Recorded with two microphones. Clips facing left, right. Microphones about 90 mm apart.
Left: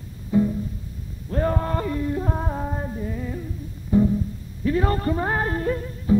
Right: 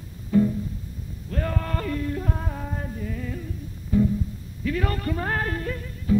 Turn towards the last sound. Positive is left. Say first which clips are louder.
# left 6 dB
turn(degrees=30)  # may be behind; listen again after turning